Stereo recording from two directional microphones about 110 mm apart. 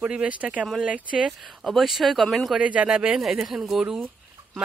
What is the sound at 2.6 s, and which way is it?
Speech, 10° right (ahead or behind).